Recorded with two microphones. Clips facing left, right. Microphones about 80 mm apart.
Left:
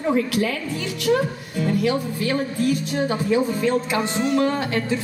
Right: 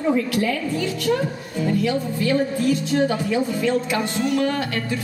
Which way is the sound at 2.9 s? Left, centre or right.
Left.